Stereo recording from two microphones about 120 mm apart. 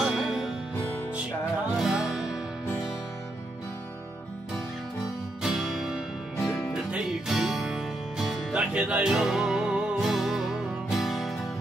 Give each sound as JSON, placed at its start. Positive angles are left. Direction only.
{"t": 0.0, "sound": "music", "side_deg": -5}
{"t": 1.8, "sound": "music", "side_deg": -5}
{"t": 5.4, "sound": "music", "side_deg": 0}